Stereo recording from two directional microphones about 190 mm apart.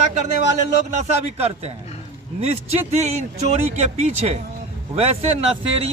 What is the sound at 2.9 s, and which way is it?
Speech, 35° right (ahead or behind).